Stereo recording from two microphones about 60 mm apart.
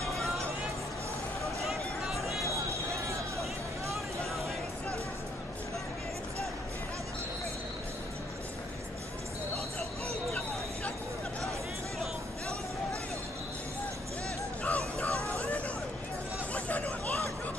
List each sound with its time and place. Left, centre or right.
1.6 s music: centre
2.4 s a sound: right
14.6 s music: left
15.3 s hubbub: left